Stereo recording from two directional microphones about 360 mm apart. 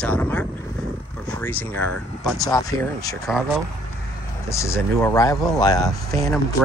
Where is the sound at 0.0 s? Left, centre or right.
Centre.